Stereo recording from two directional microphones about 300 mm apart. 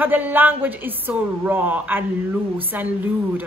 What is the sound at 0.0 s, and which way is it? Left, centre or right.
A woman's voice, centre.